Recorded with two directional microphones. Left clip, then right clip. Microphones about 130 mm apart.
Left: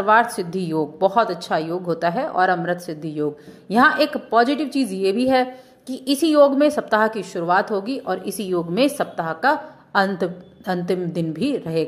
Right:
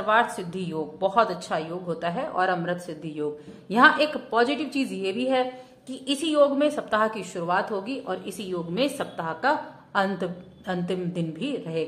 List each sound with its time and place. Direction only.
0.0 s a woman's voice: 35° left (ahead or behind)
1.1 s a woman's voice: 25° left (ahead or behind); by 8.8 s 45° left (ahead or behind)
8.9 s a woman's voice: 30° left (ahead or behind)